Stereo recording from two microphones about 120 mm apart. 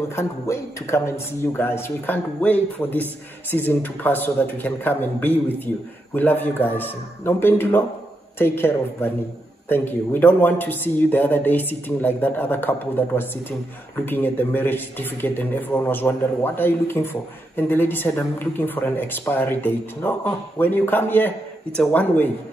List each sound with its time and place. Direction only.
0.1 s a man's voice: 25° left (ahead or behind)